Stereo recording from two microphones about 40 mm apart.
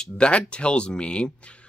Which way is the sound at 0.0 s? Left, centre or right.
Left.